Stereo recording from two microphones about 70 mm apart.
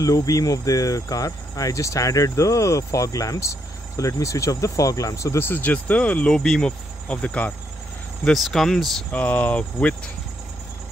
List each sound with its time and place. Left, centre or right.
0.0 s cricket: left
5.4 s speech: left
6.3 s speech: centre
7.1 s speech: left
8.2 s speech: centre
9.1 s speech: left